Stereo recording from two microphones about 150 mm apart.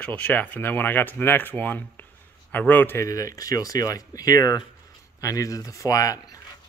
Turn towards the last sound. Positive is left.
turn(degrees=20)  # may be behind; listen again after turning